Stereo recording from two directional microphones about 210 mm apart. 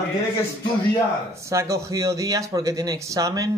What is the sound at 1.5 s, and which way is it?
A man's voice, 15° right (ahead or behind).